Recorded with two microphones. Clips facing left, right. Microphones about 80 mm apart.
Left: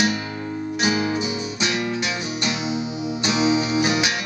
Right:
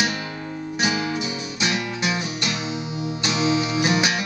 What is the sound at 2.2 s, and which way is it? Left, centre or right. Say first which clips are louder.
Music: left 2 dB; left.